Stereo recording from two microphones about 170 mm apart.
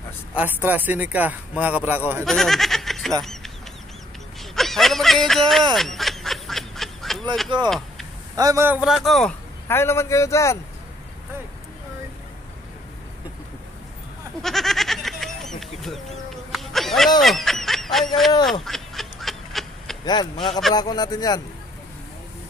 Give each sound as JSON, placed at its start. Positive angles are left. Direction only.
{"t": 0.4, "sound": "speech", "side_deg": -10}
{"t": 2.2, "sound": "speech", "side_deg": 0}
{"t": 4.6, "sound": "a sound", "side_deg": 0}
{"t": 8.4, "sound": "speech", "side_deg": -20}
{"t": 9.7, "sound": "a man's voice", "side_deg": 15}
{"t": 14.4, "sound": "goat", "side_deg": 0}
{"t": 15.6, "sound": "chicken", "side_deg": 0}
{"t": 16.5, "sound": "a sound", "side_deg": 0}
{"t": 17.2, "sound": "honk", "side_deg": 0}
{"t": 18.4, "sound": "duck", "side_deg": 0}
{"t": 20.1, "sound": "speech", "side_deg": 25}